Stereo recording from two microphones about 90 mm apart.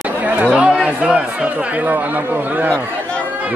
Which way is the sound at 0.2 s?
15° right (ahead or behind).